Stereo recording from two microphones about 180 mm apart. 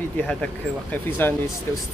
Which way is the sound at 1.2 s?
10° left (ahead or behind).